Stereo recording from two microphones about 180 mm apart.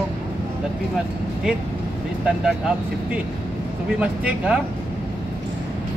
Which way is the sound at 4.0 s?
5° right (ahead or behind).